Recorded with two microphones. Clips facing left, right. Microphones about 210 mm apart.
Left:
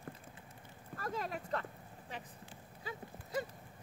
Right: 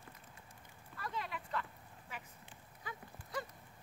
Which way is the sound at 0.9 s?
45° left (ahead or behind).